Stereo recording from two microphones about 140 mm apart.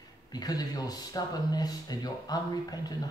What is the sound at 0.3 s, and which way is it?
Speech, 25° left (ahead or behind).